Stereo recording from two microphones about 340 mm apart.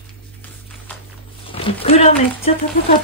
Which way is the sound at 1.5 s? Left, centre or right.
Centre.